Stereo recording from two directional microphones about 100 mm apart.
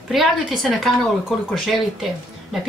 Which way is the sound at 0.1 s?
Centre (ahead or behind).